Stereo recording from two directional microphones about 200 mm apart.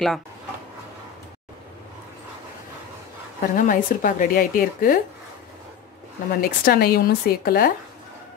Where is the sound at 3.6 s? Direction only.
40° left (ahead or behind).